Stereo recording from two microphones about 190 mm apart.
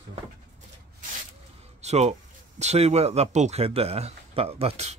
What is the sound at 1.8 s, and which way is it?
Speech, 35° right (ahead or behind).